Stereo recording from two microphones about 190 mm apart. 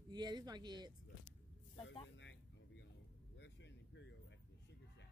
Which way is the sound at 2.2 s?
70° left (ahead or behind).